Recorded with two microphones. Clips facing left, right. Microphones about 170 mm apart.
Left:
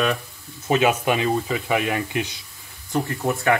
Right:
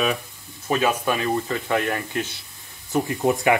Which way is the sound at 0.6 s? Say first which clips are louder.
Left 2 dB; 20° left (ahead or behind).